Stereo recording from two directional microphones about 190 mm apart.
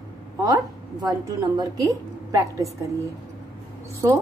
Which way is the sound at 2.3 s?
15° right (ahead or behind).